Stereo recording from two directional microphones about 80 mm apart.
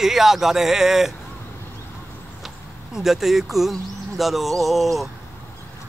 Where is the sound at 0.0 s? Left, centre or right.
Centre.